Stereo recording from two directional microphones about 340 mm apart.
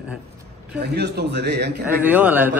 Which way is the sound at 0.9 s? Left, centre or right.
Right.